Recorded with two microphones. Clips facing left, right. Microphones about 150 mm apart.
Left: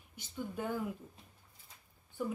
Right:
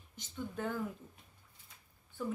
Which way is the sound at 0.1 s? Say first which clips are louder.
Left 1 dB; 10° left (ahead or behind).